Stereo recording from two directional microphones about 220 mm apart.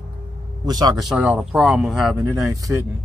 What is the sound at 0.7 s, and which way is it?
Speech, 15° right (ahead or behind).